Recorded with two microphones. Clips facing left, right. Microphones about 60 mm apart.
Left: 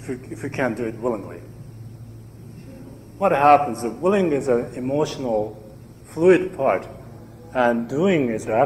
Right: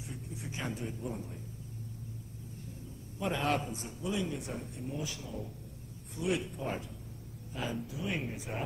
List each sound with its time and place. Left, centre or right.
0.0 s a man's voice: left
3.2 s a man's voice: left